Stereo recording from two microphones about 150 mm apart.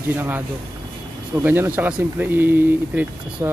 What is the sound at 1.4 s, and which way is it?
Speech, 15° right (ahead or behind).